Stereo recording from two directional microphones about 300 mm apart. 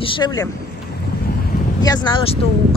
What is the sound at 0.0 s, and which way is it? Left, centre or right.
Speech, centre.